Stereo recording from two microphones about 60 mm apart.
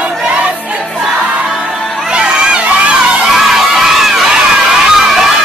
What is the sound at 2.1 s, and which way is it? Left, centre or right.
Children shouting, centre.